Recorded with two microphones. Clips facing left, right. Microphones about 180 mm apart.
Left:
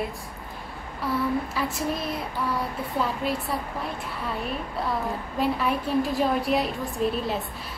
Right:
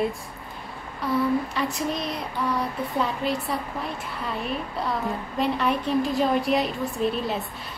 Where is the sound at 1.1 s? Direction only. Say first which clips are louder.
Right 3 dB; centre (ahead or behind).